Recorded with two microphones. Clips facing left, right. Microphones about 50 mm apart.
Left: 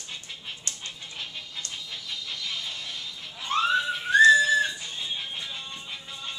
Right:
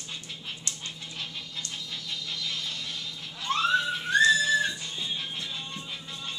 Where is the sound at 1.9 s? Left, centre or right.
Centre.